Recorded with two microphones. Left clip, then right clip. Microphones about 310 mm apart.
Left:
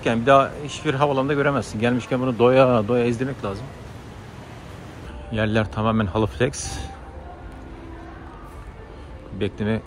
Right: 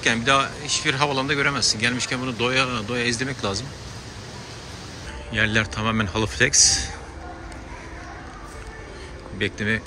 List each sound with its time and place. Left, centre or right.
0.0 s speech: centre
5.3 s speech: centre
9.4 s speech: centre